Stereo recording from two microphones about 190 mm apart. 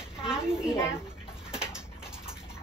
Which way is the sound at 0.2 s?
5° right (ahead or behind).